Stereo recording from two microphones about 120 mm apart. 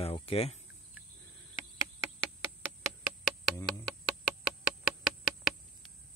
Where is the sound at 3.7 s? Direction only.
Centre (ahead or behind).